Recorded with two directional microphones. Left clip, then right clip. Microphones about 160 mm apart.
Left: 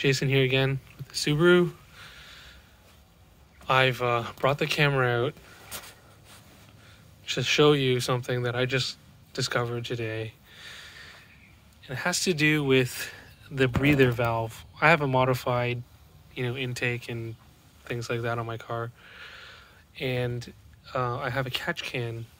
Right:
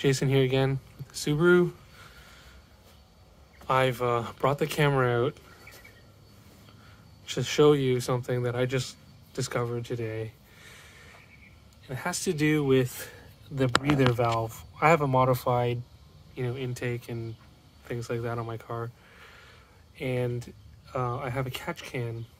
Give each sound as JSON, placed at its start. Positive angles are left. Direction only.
{"t": 0.0, "sound": "a sound", "side_deg": -25}
{"t": 3.6, "sound": "speech", "side_deg": -15}
{"t": 7.2, "sound": "speech", "side_deg": -20}
{"t": 16.3, "sound": "speech", "side_deg": 5}